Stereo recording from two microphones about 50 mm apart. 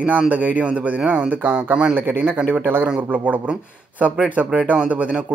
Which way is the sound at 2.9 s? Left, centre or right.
Right.